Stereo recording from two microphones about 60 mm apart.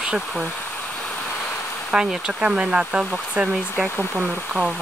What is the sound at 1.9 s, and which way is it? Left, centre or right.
Speech, centre.